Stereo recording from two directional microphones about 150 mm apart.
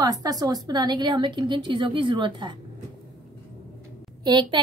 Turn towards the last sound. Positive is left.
turn(degrees=-30)  # may be behind; listen again after turning